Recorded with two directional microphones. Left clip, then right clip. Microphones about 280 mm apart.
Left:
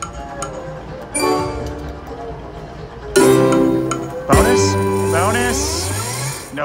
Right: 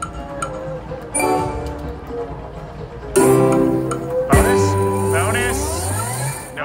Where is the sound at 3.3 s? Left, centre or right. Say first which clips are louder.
Left 1 dB; centre.